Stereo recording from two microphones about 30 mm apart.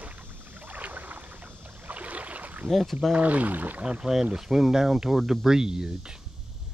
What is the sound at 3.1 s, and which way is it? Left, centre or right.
Speech, right.